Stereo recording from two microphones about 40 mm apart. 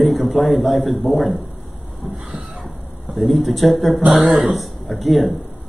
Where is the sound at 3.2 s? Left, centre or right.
Centre.